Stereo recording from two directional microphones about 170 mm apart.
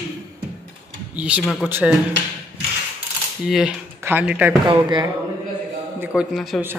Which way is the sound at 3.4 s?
Centre (ahead or behind).